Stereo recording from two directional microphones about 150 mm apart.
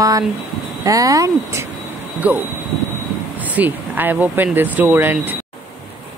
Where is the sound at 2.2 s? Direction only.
10° right (ahead or behind).